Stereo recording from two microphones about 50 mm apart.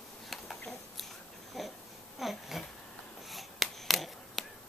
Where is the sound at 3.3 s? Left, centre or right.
Centre.